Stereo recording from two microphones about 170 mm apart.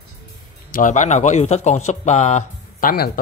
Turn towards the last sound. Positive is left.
turn(degrees=55)  # may be behind; listen again after turning